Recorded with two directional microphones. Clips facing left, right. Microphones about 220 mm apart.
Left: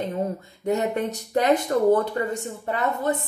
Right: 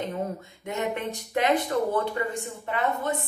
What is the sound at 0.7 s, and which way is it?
A woman's voice, 40° left (ahead or behind).